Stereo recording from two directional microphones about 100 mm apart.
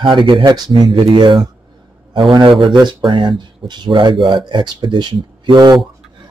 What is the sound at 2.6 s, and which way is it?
Speech, 50° right (ahead or behind).